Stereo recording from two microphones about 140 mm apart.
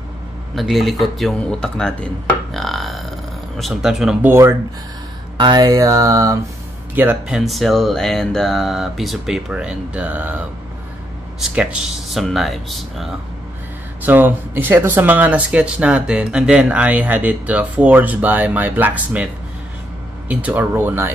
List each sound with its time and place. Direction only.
0.6 s speech: centre (ahead or behind)
4.3 s speech: 20° right (ahead or behind)
7.0 s speech: 10° right (ahead or behind)
14.0 s speech: 15° right (ahead or behind)
20.2 s speech: 10° right (ahead or behind)